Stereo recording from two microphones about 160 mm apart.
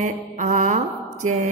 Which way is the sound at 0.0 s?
50° right (ahead or behind).